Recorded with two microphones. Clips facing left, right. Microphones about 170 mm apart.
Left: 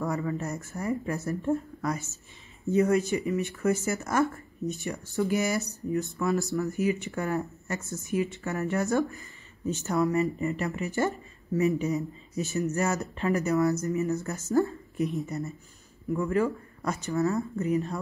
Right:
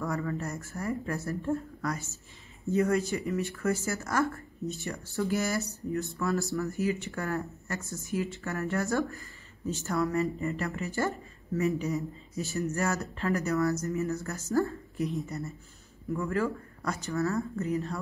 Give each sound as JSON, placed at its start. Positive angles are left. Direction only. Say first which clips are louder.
{"t": 0.0, "sound": "speech", "louder": "left 2 dB", "side_deg": 20}